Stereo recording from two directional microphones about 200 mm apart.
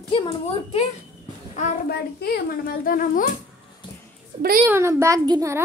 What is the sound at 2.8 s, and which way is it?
Speech, 45° left (ahead or behind).